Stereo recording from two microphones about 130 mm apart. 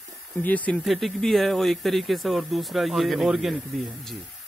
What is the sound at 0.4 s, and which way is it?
Speech, 10° left (ahead or behind).